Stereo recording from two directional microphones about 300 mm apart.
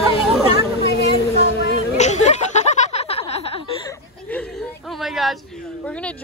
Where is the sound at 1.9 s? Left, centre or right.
Left.